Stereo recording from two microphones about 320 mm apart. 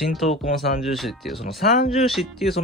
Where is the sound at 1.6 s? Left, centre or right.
Left.